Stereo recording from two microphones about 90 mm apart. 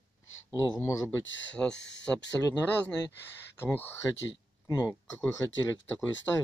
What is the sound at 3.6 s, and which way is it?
A man's voice, 25° left (ahead or behind).